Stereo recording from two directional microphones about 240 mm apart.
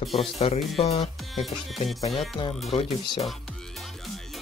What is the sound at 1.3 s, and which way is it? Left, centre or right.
Speech, centre.